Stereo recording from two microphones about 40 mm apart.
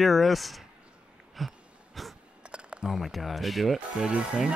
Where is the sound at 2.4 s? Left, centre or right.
Right.